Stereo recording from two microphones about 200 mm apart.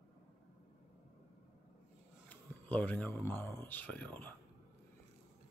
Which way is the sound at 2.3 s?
10° left (ahead or behind).